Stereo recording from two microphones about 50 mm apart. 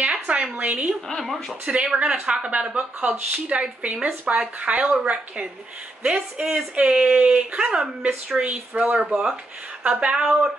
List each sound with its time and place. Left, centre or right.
0.0 s a woman's voice: right
1.0 s speech: centre
1.7 s speech: right
9.0 s speech: centre
9.8 s speech: right
10.1 s speech: centre